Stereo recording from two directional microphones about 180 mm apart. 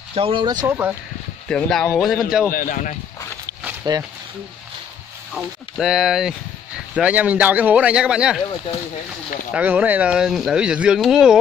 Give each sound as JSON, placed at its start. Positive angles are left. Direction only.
{"t": 0.1, "sound": "speech", "side_deg": -30}
{"t": 0.7, "sound": "speech", "side_deg": -10}
{"t": 1.5, "sound": "speech", "side_deg": 0}
{"t": 2.5, "sound": "speech", "side_deg": 50}
{"t": 3.9, "sound": "speech", "side_deg": -25}
{"t": 5.3, "sound": "speech", "side_deg": -5}
{"t": 9.5, "sound": "speech", "side_deg": -10}